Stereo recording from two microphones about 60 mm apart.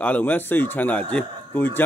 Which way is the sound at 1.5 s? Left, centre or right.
Left.